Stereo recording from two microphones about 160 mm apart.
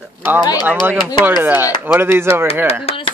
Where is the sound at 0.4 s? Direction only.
25° left (ahead or behind).